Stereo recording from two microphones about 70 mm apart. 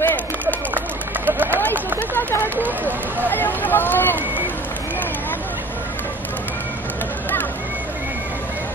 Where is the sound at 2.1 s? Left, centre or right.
Left.